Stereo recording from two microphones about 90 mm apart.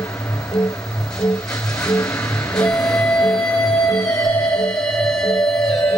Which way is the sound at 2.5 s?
10° left (ahead or behind).